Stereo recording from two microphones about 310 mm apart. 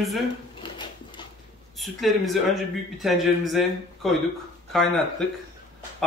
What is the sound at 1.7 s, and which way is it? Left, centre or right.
Speech, centre.